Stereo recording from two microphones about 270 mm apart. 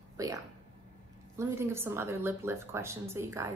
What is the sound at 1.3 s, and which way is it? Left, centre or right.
A woman's voice, centre.